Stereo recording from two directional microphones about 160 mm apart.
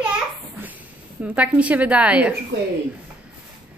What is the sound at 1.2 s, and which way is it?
Speech, 10° right (ahead or behind).